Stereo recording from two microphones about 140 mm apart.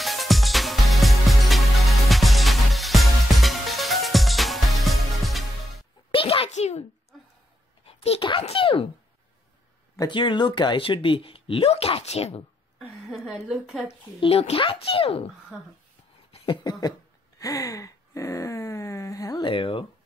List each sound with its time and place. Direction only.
0.0 s music: centre (ahead or behind)
6.1 s a sound: 40° left (ahead or behind)
7.8 s a child's voice: 45° left (ahead or behind)
9.9 s speech: 35° left (ahead or behind)
12.7 s a woman's voice: centre (ahead or behind)
14.5 s speech: 40° left (ahead or behind)
16.3 s a sound: 35° left (ahead or behind)
17.4 s a sound: 25° left (ahead or behind)
19.5 s speech: 40° left (ahead or behind)